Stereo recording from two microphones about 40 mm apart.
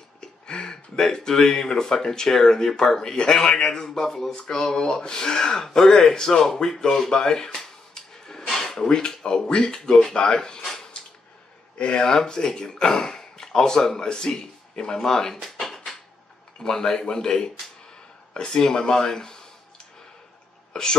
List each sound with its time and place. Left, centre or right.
0.2 s speech: left
8.8 s speech: left
10.9 s a sound: left
11.8 s speech: left
15.4 s a sound: centre
16.5 s speech: centre
20.7 s speech: centre